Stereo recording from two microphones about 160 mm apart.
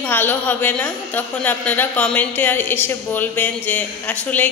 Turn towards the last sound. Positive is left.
turn(degrees=10)  # may be behind; listen again after turning